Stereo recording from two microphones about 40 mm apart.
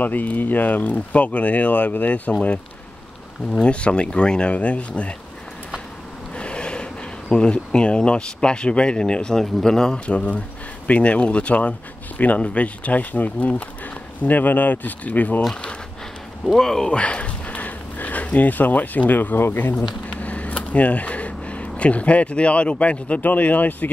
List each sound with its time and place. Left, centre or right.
0.0 s speech: left
3.5 s speech: left
6.3 s a sound: left
7.2 s speech: left
10.0 s speech: left
16.5 s speech: centre
16.9 s a sound: left
19.4 s speech: left
20.1 s speech: left